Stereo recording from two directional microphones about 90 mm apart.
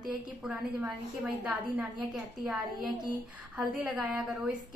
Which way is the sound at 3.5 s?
10° right (ahead or behind).